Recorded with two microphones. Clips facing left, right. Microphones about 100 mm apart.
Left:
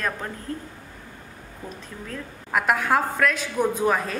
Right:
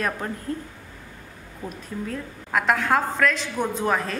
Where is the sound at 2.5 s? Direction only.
5° left (ahead or behind).